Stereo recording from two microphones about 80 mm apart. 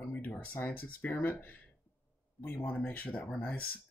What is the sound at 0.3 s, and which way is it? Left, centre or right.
Speech, left.